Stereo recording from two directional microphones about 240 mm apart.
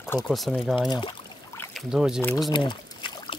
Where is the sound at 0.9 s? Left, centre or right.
Centre.